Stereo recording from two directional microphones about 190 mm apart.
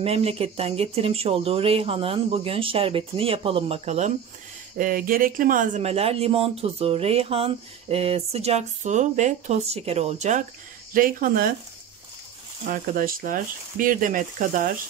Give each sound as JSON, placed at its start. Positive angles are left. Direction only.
{"t": 0.0, "sound": "speech", "side_deg": -30}
{"t": 4.7, "sound": "speech", "side_deg": -45}
{"t": 12.6, "sound": "speech", "side_deg": -50}